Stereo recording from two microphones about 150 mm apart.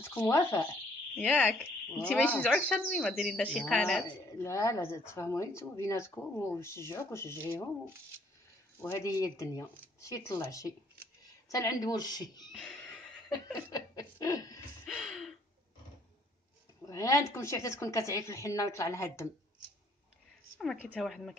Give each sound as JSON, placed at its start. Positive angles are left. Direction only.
{"t": 0.0, "sound": "speech", "side_deg": 15}
{"t": 4.5, "sound": "speech", "side_deg": 20}
{"t": 8.8, "sound": "a woman's voice", "side_deg": 20}
{"t": 12.5, "sound": "a sound", "side_deg": 5}
{"t": 13.6, "sound": "chuckle", "side_deg": 25}
{"t": 14.9, "sound": "gasp", "side_deg": 0}
{"t": 16.8, "sound": "a woman's voice", "side_deg": 20}
{"t": 20.9, "sound": "speech", "side_deg": 0}